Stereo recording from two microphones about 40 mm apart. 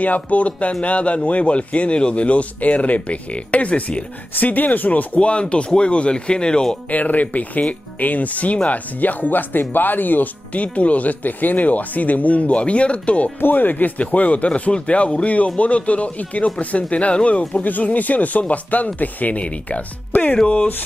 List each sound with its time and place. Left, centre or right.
0.0 s speech: left
5.2 s speech: left
6.9 s speech: left
13.4 s speech: left
17.6 s speech: left